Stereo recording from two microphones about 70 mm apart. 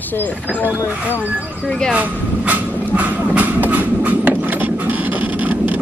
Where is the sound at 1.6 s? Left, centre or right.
Centre.